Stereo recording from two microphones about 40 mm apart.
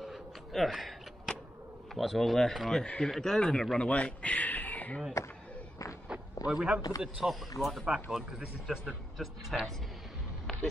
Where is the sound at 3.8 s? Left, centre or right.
Left.